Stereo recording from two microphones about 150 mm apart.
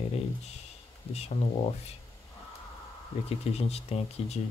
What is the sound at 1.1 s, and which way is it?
Speech, 45° left (ahead or behind).